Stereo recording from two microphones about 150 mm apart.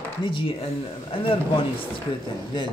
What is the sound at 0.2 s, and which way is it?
Speech, 35° left (ahead or behind).